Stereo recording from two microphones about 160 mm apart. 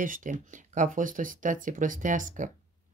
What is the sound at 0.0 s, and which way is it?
Speech, 55° right (ahead or behind).